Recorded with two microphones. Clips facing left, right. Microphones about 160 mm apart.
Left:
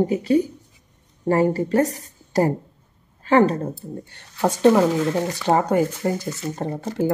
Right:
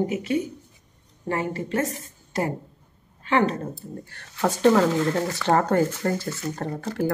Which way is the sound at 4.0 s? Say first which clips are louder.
Left 3 dB; 20° left (ahead or behind).